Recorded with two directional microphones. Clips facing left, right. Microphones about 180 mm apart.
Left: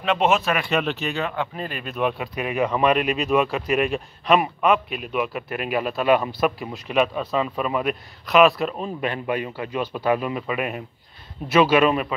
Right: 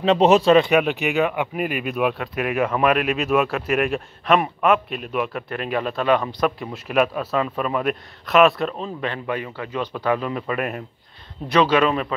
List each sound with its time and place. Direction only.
0.0 s speech: 35° right (ahead or behind)
0.7 s a man's voice: 10° right (ahead or behind); by 12.1 s 15° left (ahead or behind)